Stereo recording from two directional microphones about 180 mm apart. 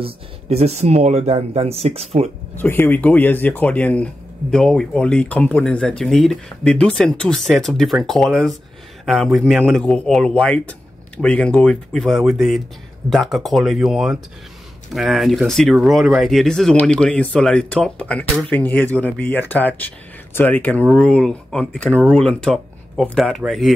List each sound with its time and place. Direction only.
0.0 s speech: 35° right (ahead or behind)
2.5 s speech: 10° left (ahead or behind)